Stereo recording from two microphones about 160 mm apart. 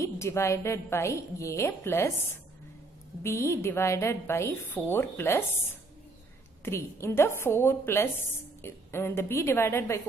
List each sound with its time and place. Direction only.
0.0 s a woman's voice: 15° left (ahead or behind)
3.2 s a woman's voice: 15° left (ahead or behind)